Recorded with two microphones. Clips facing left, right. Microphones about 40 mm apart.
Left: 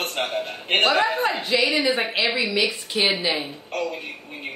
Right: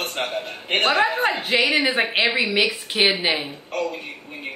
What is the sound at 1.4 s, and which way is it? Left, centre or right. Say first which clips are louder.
A woman's voice: right 2 dB; right.